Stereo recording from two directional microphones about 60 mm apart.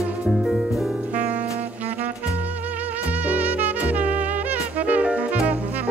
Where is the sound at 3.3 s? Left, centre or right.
Right.